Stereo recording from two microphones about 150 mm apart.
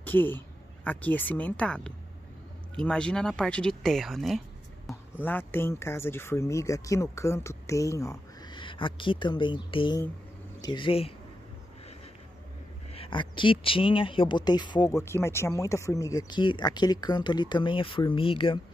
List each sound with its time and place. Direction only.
0.0 s speech: 15° left (ahead or behind)
5.2 s speech: 15° left (ahead or behind); by 11.1 s 40° left (ahead or behind)
12.9 s speech: 35° left (ahead or behind)